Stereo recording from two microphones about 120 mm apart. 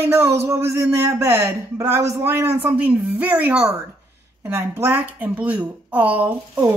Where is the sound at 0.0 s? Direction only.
20° right (ahead or behind).